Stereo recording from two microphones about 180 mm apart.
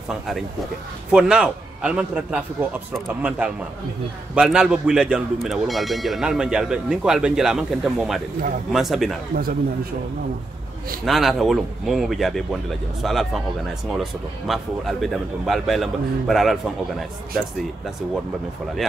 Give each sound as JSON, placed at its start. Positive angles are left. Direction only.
{"t": 1.1, "sound": "speech", "side_deg": -5}
{"t": 9.3, "sound": "speech", "side_deg": -55}
{"t": 11.1, "sound": "speech", "side_deg": 0}